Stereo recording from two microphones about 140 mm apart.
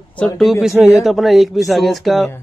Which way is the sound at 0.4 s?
Centre (ahead or behind).